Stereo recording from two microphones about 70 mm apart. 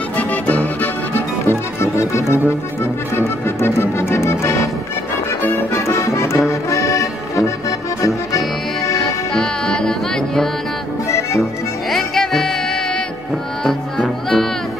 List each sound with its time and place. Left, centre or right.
0.2 s music: left
1.5 s music: left
5.7 s music: left
6.5 s accordion: left
9.3 s music: centre
11.1 s music: left
11.9 s music: centre